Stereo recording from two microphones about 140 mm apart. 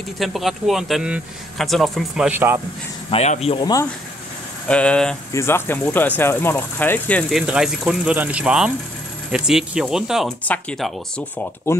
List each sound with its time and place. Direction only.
0.2 s speech: centre (ahead or behind)
2.3 s speech: 15° right (ahead or behind)
3.1 s speech: 45° left (ahead or behind)
4.6 s speech: 10° left (ahead or behind)
5.3 s speech: 20° left (ahead or behind)
7.2 s speech: 5° right (ahead or behind)
10.4 s speech: 10° left (ahead or behind)